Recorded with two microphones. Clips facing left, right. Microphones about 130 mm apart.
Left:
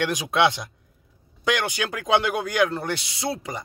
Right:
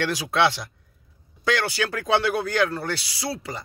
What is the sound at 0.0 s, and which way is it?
Speech, 20° left (ahead or behind).